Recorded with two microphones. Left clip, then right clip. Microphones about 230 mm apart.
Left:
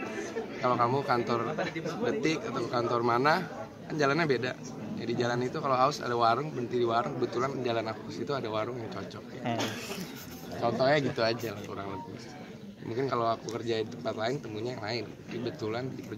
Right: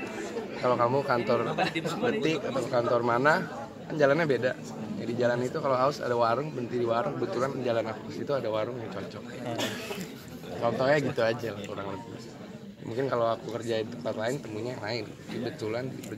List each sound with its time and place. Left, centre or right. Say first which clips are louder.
0.7 s a man's voice: right 2 dB; centre
1.6 s a man's voice: right 4 dB; right
2.2 s a man's voice: right 2 dB; centre
10.6 s a man's voice: right 1 dB; centre
12.9 s a man's voice: right 2 dB; centre